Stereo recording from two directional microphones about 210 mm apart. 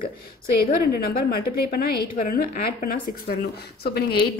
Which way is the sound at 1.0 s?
45° left (ahead or behind).